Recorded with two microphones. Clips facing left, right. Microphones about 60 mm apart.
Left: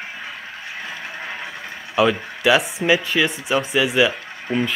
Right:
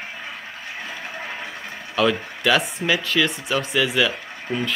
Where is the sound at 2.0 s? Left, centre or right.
Centre.